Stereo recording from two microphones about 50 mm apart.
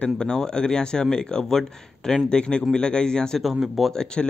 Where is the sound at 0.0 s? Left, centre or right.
Centre.